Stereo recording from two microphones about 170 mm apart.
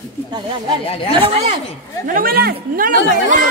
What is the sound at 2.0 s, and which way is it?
Speech, 55° right (ahead or behind).